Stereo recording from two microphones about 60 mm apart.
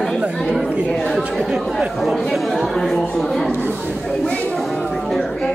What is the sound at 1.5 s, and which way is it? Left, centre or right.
Speech, centre.